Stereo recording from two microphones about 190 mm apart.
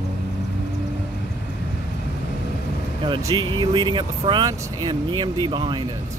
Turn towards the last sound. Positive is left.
turn(degrees=-25)  # may be behind; listen again after turning